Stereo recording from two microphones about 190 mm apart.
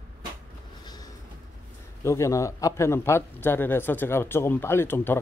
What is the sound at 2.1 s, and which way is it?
Speech, 15° left (ahead or behind).